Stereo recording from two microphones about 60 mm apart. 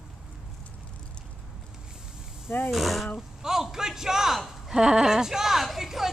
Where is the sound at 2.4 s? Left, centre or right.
Left.